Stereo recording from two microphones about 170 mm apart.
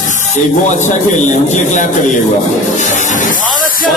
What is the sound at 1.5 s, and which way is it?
Speech, 45° left (ahead or behind).